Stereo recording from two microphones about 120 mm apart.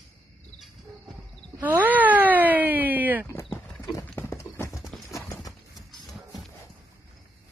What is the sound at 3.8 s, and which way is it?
Clip-clop, 25° left (ahead or behind).